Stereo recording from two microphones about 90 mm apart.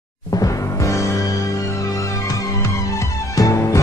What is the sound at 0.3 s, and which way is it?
Music, 40° left (ahead or behind).